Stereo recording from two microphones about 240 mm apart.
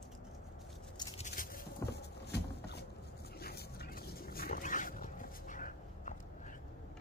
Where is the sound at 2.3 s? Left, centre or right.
Left.